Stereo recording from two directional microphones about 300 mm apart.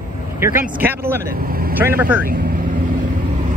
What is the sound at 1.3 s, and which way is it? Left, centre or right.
Speech, right.